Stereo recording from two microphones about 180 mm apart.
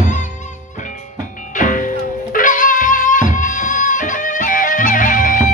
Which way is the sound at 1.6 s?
50° left (ahead or behind).